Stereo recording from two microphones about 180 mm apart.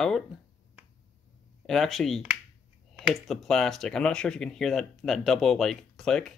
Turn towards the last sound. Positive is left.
turn(degrees=5)  # may be behind; listen again after turning